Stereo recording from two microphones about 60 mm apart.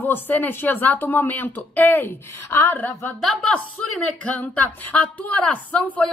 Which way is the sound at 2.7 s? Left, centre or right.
Left.